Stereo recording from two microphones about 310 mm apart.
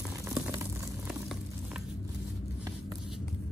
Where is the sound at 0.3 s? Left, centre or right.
Centre.